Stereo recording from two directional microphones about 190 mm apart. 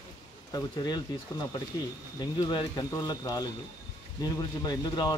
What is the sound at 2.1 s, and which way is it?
Speech, 25° left (ahead or behind).